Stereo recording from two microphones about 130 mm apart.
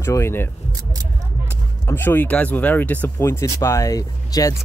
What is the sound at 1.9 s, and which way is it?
Speech, 15° left (ahead or behind).